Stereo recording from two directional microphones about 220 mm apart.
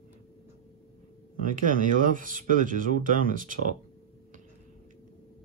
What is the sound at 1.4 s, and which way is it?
Speech, 40° right (ahead or behind).